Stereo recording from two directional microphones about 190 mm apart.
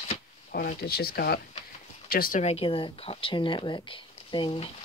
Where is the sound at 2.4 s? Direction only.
30° left (ahead or behind).